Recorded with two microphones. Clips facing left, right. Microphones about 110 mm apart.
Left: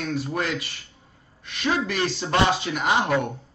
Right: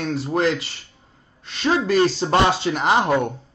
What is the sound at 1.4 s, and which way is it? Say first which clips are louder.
Speech: right 4 dB; 30° right (ahead or behind).